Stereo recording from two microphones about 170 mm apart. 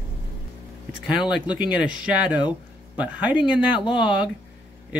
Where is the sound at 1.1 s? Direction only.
5° right (ahead or behind).